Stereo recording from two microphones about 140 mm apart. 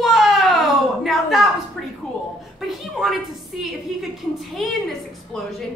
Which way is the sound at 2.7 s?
Centre (ahead or behind).